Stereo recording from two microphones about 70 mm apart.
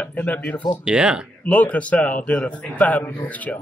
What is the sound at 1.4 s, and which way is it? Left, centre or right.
Speech, centre.